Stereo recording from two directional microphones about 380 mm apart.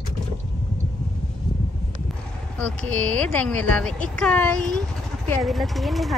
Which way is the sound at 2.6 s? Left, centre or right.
Centre.